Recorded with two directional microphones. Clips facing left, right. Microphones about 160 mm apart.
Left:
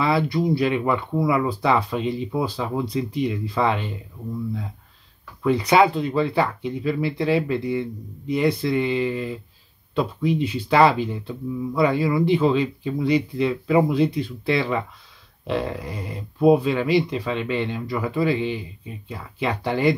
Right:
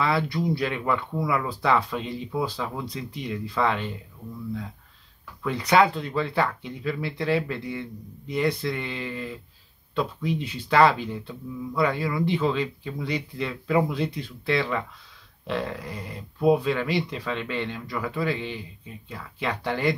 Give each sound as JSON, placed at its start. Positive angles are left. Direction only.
{"t": 0.0, "sound": "speech", "side_deg": 5}
{"t": 2.5, "sound": "speech", "side_deg": 20}
{"t": 2.9, "sound": "speech", "side_deg": 10}
{"t": 5.6, "sound": "speech", "side_deg": 10}